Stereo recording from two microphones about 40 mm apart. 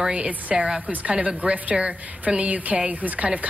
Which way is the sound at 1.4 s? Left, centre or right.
Right.